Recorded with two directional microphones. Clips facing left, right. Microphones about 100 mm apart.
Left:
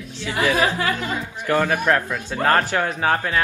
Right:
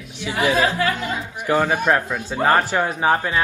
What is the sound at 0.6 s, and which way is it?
Speech, 15° left (ahead or behind).